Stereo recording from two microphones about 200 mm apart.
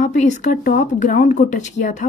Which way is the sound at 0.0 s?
35° left (ahead or behind).